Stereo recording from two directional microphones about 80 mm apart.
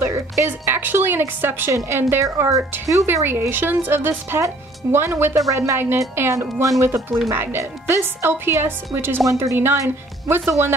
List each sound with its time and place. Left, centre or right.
0.0 s music: right
0.5 s speech: right
3.1 s speech: right